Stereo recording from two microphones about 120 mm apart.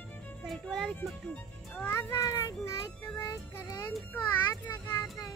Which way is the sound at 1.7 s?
15° left (ahead or behind).